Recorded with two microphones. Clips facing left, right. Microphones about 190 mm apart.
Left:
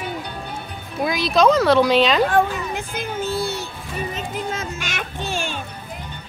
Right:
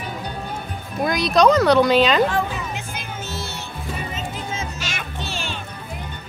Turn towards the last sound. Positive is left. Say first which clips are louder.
# left 3 dB
turn(degrees=50)  # may be behind; listen again after turning